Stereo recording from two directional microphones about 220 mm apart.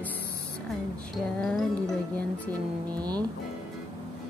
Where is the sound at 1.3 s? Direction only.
Centre (ahead or behind).